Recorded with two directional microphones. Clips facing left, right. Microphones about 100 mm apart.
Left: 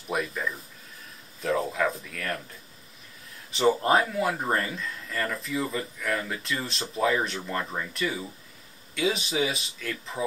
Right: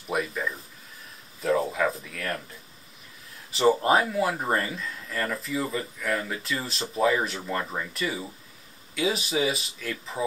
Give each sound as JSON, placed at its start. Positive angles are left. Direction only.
{"t": 0.1, "sound": "speech", "side_deg": 0}
{"t": 3.5, "sound": "speech", "side_deg": -5}